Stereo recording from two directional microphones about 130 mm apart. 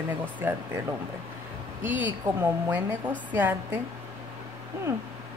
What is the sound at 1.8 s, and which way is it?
Speech, 15° right (ahead or behind).